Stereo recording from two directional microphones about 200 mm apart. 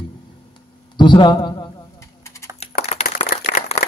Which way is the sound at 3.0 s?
40° left (ahead or behind).